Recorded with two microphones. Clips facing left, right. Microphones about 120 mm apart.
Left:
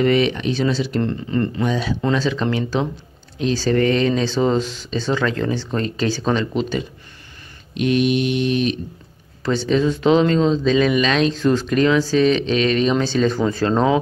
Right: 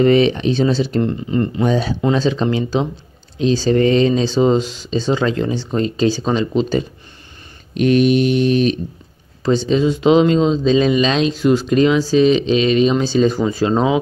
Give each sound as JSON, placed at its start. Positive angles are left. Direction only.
{"t": 0.0, "sound": "speech", "side_deg": -30}
{"t": 1.0, "sound": "speech", "side_deg": -20}
{"t": 1.6, "sound": "mantra", "side_deg": -35}
{"t": 2.0, "sound": "speech", "side_deg": -20}
{"t": 7.7, "sound": "mantra", "side_deg": -45}
{"t": 9.4, "sound": "speech", "side_deg": -15}